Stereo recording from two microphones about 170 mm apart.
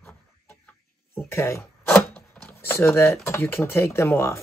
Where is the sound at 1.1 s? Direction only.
15° left (ahead or behind).